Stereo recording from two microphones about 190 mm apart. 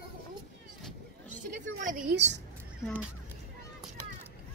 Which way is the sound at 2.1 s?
70° right (ahead or behind).